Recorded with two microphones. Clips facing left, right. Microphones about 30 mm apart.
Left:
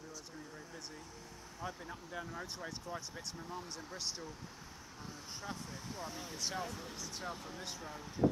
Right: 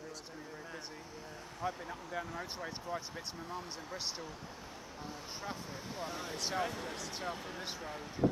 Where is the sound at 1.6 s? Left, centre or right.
Centre.